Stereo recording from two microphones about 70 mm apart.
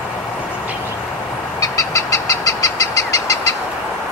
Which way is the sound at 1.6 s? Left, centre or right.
Left.